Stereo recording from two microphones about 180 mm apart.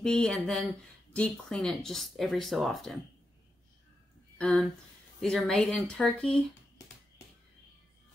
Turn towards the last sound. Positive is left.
turn(degrees=0)  # may be behind; listen again after turning